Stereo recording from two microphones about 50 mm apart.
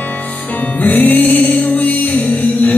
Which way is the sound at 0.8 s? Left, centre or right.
Left.